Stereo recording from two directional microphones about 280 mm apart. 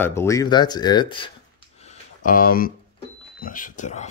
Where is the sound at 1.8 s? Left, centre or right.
Left.